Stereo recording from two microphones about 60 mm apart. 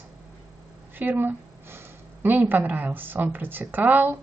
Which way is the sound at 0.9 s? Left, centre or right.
Right.